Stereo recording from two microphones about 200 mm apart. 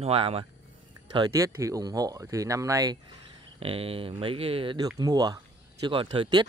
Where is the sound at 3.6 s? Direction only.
30° right (ahead or behind).